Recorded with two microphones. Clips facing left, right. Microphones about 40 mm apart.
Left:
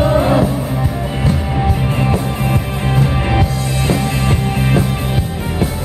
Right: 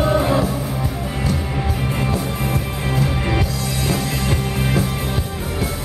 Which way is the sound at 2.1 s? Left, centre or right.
Left.